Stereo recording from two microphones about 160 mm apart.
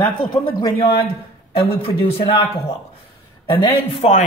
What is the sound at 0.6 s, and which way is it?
A man's voice, 30° left (ahead or behind).